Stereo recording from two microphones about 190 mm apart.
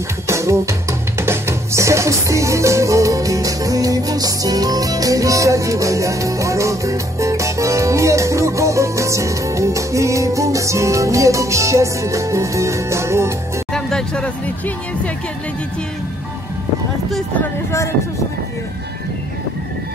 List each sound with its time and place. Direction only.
0.3 s speech: 15° right (ahead or behind)
13.7 s music: 5° left (ahead or behind)
17.1 s speech: 10° left (ahead or behind)